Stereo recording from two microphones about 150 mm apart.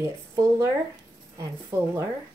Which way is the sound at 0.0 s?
20° right (ahead or behind).